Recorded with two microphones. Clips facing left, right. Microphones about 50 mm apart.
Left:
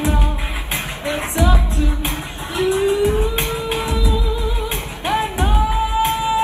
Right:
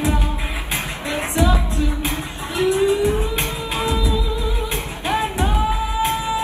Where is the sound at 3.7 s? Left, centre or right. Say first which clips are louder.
Right 3 dB; right.